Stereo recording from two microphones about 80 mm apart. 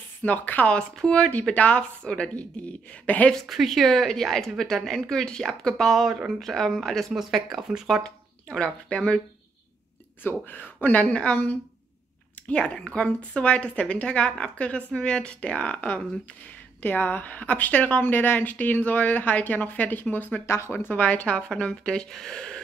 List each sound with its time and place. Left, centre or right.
0.2 s speech: left
3.4 s speech: centre
8.0 s speech: centre
10.2 s a woman's voice: left; by 22.6 s centre